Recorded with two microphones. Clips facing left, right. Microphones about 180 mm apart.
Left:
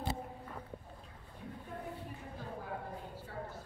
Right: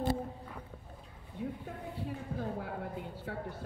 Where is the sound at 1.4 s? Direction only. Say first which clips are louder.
Right 10 dB; 90° right.